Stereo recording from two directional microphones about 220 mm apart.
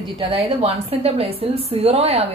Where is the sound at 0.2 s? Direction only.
25° right (ahead or behind).